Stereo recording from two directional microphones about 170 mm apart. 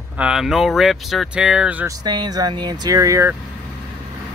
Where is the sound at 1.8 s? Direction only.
25° right (ahead or behind).